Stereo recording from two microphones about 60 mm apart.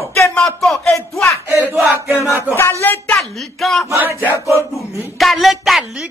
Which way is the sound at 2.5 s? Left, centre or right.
Left.